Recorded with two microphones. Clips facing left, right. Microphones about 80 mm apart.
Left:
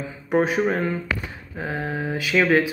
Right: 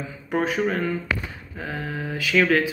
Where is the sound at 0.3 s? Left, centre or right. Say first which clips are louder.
Left 3 dB; left.